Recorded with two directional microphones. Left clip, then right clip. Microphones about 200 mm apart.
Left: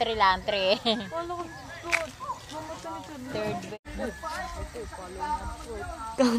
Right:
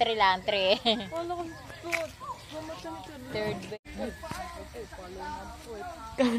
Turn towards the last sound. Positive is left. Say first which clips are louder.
# left 3 dB
turn(degrees=10)  # may be behind; listen again after turning